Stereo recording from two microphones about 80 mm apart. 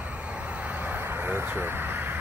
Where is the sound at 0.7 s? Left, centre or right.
Right.